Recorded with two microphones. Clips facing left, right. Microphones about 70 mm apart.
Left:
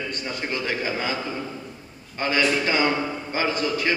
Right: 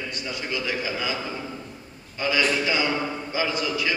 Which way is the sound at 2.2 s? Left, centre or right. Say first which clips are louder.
Left 1 dB; left.